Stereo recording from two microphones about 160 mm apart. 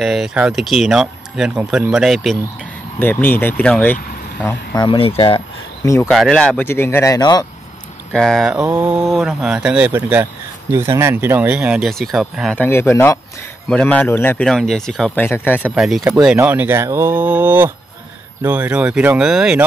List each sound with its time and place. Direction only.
0.0 s speech: centre (ahead or behind)
3.0 s speech: 10° left (ahead or behind)
4.7 s speech: 30° left (ahead or behind)
6.0 s speech: 5° left (ahead or behind); by 7.4 s 25° left (ahead or behind)
8.1 s speech: centre (ahead or behind)
12.5 s speech: 15° left (ahead or behind)
14.5 s speech: centre (ahead or behind)
15.2 s speech: 15° left (ahead or behind)
15.6 s speech: 5° right (ahead or behind)